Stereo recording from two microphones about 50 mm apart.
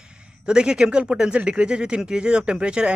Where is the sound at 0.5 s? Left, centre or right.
Centre.